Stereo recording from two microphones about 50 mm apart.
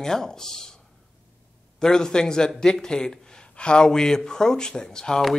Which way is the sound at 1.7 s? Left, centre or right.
Centre.